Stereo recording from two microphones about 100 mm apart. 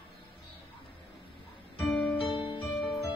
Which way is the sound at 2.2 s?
65° left (ahead or behind).